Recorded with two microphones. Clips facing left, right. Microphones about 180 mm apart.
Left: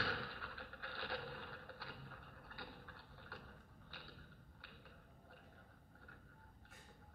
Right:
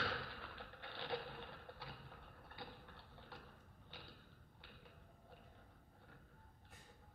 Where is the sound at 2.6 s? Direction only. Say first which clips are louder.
Right 1 dB; 25° right (ahead or behind).